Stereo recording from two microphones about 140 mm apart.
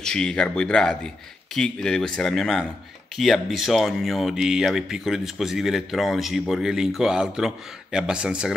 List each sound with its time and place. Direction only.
0.0 s speech: 5° left (ahead or behind)